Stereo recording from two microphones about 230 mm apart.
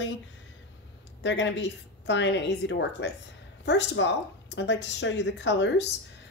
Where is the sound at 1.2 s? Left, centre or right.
Left.